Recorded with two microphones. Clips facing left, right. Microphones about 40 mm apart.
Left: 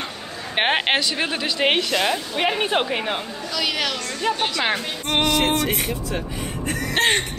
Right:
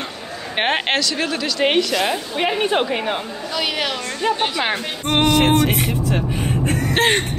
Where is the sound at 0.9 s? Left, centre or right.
Centre.